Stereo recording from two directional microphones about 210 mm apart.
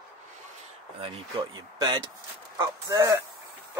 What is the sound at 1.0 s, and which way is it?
Speech, 20° right (ahead or behind).